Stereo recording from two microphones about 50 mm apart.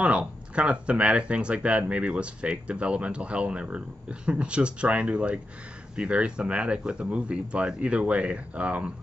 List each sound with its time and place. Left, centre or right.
0.0 s speech: right